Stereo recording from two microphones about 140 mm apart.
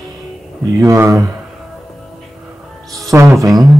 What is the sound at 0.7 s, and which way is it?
Speech, 20° right (ahead or behind).